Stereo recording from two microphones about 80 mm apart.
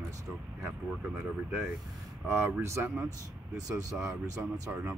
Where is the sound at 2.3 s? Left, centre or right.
Right.